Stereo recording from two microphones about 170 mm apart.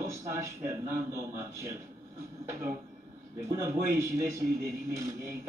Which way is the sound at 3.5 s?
15° right (ahead or behind).